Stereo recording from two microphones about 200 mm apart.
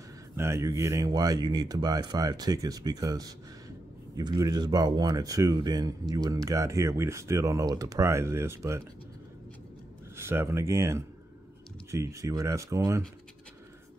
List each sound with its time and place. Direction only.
0.4 s speech: 15° right (ahead or behind)
10.1 s speech: 10° right (ahead or behind)